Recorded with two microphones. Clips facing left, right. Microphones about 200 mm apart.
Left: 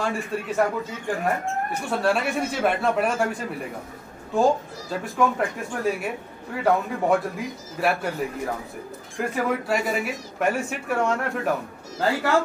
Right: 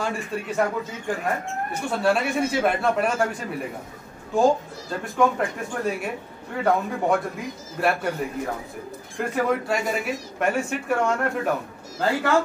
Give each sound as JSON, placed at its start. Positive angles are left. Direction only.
{"t": 0.0, "sound": "speech", "side_deg": 0}
{"t": 1.9, "sound": "speech", "side_deg": 0}